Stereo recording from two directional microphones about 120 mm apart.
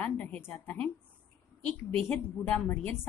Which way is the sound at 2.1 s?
15° left (ahead or behind).